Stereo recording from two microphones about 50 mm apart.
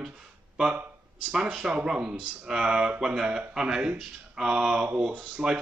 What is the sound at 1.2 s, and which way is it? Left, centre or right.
A man's voice, centre.